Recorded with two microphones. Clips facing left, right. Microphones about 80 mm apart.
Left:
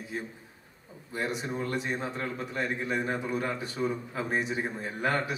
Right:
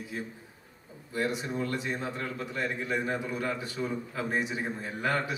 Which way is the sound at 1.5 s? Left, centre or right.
Left.